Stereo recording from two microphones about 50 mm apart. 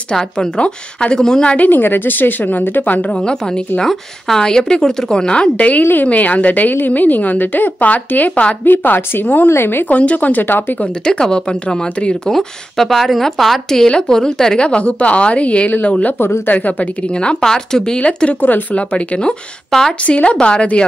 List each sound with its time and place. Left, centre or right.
0.1 s a woman's voice: centre
1.6 s a woman's voice: left
3.1 s a woman's voice: centre; by 9.5 s left
9.5 s speech: left
9.8 s a woman's voice: left
10.4 s a woman's voice: left
11.1 s a woman's voice: centre
12.4 s speech: centre
13.7 s a woman's voice: centre; by 17.1 s left
17.1 s a woman's voice: centre
18.4 s a woman's voice: left
18.8 s a woman's voice: left
19.7 s a woman's voice: centre
20.0 s a woman's voice: left